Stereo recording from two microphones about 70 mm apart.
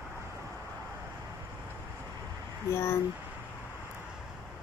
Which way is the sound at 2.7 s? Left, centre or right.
Left.